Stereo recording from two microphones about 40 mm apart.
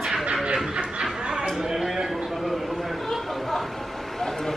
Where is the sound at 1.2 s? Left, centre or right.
Right.